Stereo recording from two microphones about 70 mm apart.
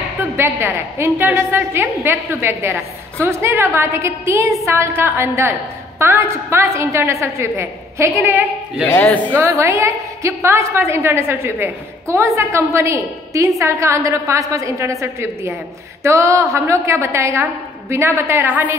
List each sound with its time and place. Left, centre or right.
0.2 s a woman's voice: right
8.9 s speech: left
9.3 s a woman's voice: right
18.4 s a woman's voice: right